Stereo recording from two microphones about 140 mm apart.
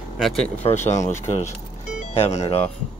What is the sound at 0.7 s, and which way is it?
Speech, 55° left (ahead or behind).